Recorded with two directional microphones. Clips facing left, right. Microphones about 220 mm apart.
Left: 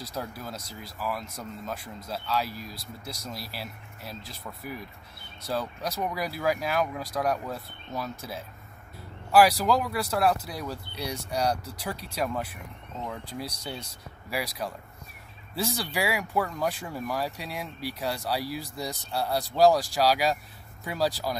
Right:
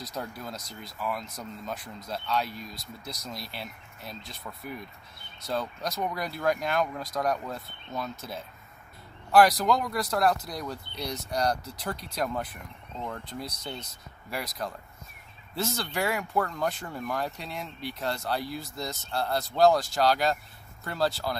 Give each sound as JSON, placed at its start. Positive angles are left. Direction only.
{"t": 0.1, "sound": "speech", "side_deg": 5}
{"t": 2.7, "sound": "speech", "side_deg": 30}
{"t": 3.3, "sound": "speech", "side_deg": 5}